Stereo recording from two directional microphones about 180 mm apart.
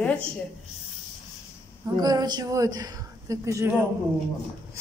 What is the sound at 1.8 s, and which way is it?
A woman's voice, 20° right (ahead or behind).